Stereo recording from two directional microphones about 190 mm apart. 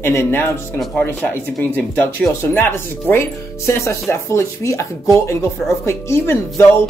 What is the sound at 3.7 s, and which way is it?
Speech, 15° left (ahead or behind).